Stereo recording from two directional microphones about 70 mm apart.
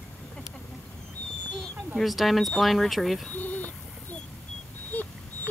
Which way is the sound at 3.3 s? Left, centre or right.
Left.